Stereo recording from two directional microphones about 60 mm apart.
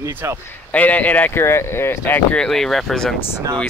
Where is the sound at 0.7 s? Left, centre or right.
Left.